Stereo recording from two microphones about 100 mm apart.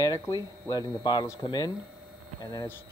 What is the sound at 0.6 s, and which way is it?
Speech, 40° left (ahead or behind).